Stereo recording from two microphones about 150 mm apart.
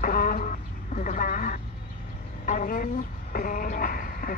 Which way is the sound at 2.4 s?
60° left (ahead or behind).